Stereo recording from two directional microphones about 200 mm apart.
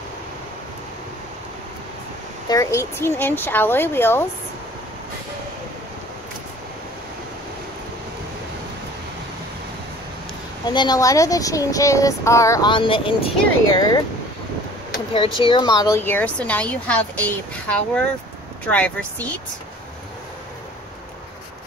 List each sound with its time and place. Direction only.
2.5 s a woman's voice: 15° left (ahead or behind)
10.7 s a woman's voice: 20° left (ahead or behind)
15.1 s a woman's voice: 25° left (ahead or behind); by 19.4 s 5° left (ahead or behind)